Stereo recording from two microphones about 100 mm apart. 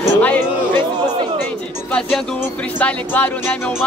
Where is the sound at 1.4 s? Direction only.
15° left (ahead or behind).